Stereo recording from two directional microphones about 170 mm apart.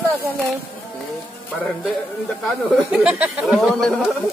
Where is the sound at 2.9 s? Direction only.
5° right (ahead or behind).